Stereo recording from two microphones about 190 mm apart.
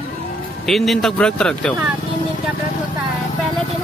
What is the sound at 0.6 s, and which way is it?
Speech, centre (ahead or behind).